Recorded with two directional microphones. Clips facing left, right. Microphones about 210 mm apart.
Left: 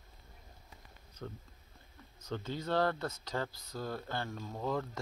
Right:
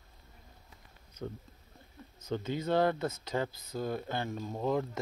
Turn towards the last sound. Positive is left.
turn(degrees=-20)  # may be behind; listen again after turning